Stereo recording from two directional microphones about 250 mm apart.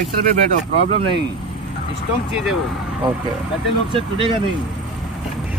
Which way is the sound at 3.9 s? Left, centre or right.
Right.